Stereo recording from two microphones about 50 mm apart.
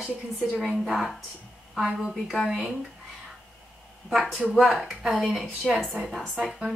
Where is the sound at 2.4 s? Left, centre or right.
Centre.